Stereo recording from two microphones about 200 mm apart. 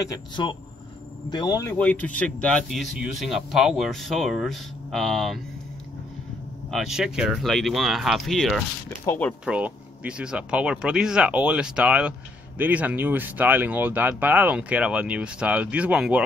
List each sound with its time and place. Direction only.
0.0 s speech: 20° left (ahead or behind)
1.8 s speech: 10° left (ahead or behind)
6.7 s speech: centre (ahead or behind)